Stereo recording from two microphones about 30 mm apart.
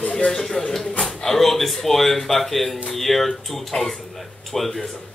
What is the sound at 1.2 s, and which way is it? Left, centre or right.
Speech, centre.